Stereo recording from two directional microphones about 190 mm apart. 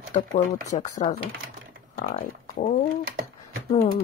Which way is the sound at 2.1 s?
40° left (ahead or behind).